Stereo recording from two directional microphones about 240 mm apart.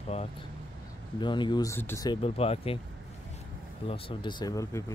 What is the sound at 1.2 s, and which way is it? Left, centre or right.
Speech, centre.